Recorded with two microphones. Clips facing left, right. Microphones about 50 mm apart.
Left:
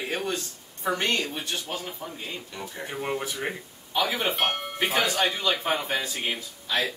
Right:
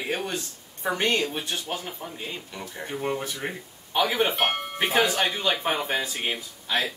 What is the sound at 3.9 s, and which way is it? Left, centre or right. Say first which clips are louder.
Speech: right 2 dB; right.